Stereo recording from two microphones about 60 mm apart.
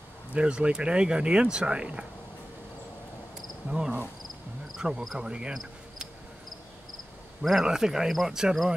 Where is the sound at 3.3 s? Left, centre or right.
Centre.